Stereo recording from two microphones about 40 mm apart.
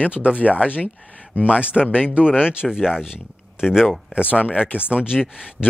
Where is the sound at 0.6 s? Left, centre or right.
Left.